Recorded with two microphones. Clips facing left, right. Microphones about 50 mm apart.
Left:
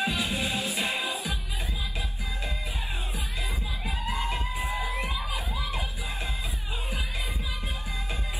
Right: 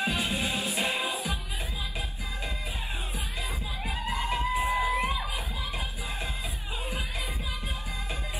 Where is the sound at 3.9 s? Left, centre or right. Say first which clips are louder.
Right 1 dB; right.